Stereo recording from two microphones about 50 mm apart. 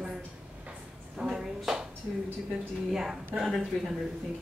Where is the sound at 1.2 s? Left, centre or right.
Centre.